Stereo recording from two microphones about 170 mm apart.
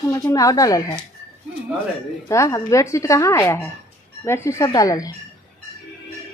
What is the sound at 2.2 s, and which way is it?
Speech, 20° left (ahead or behind).